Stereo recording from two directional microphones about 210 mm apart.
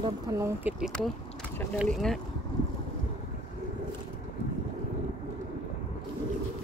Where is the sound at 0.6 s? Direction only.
5° right (ahead or behind).